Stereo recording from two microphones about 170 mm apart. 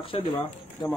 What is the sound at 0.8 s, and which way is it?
Speech, 30° left (ahead or behind).